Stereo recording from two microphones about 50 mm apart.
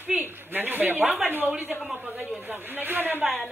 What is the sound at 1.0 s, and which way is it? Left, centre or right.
Speech, centre.